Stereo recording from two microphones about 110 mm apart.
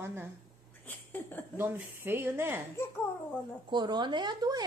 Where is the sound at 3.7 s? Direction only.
40° right (ahead or behind).